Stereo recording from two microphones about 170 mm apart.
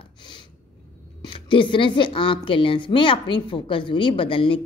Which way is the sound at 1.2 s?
30° left (ahead or behind).